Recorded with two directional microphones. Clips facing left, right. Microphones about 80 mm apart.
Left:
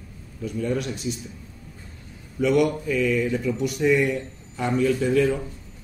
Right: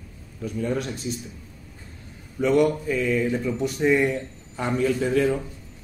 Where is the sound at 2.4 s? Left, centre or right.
Right.